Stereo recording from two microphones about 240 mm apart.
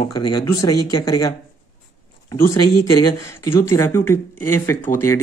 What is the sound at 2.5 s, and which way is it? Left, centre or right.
Speech, left.